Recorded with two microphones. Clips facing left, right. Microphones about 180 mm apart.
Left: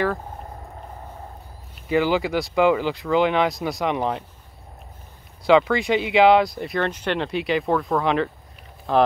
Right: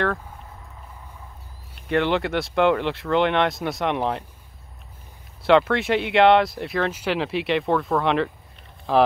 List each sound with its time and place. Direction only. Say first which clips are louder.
0.4 s a sound: left 6 dB; 50° left (ahead or behind)
1.9 s speech: left 1 dB; 5° left (ahead or behind)
5.4 s speech: left 1 dB; centre (ahead or behind)